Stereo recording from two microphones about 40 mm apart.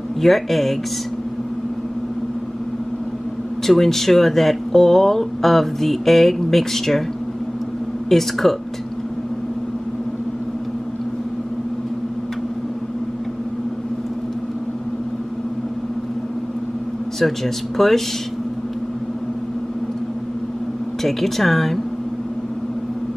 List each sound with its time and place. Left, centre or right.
0.2 s speech: centre
3.6 s speech: centre
8.1 s speech: centre
17.2 s speech: centre
21.0 s speech: centre